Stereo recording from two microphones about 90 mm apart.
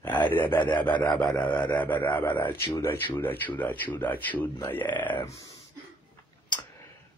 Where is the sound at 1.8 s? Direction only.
20° left (ahead or behind).